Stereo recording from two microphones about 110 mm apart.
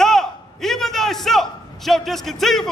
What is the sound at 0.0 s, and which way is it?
A man's voice, 5° left (ahead or behind).